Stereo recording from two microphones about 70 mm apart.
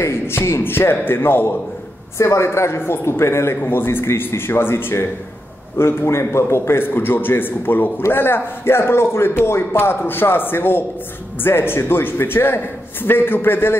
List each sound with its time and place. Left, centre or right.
0.0 s speech: left